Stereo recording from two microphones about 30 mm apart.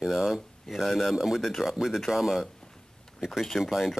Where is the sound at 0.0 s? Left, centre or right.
Centre.